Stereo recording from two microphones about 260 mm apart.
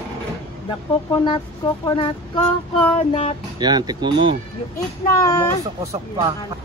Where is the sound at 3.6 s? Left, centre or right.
Centre.